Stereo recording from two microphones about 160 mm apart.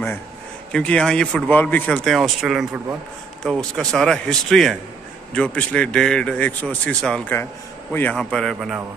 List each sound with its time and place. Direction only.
0.7 s a man's voice: 5° left (ahead or behind)